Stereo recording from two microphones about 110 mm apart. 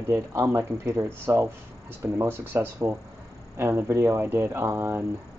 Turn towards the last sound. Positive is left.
turn(degrees=-20)  # may be behind; listen again after turning